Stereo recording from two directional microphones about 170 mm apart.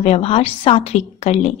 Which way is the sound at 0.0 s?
35° left (ahead or behind).